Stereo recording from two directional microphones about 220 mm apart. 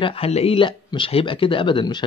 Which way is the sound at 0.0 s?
25° left (ahead or behind).